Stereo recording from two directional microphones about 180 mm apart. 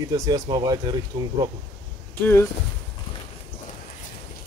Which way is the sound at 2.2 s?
15° left (ahead or behind).